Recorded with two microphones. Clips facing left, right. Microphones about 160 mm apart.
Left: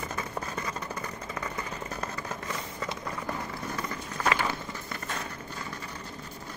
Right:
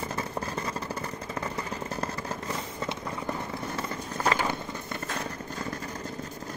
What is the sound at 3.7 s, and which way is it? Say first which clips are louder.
Clip-clop: right 2 dB; 35° right (ahead or behind).